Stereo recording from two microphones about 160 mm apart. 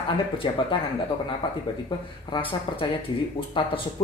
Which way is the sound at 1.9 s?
30° left (ahead or behind).